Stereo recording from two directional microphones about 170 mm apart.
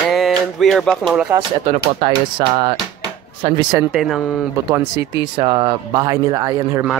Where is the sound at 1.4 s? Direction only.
30° right (ahead or behind).